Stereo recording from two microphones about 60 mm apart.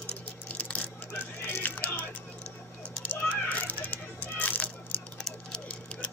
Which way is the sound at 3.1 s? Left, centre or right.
Left.